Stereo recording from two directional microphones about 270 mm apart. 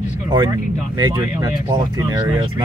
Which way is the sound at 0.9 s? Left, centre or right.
Centre.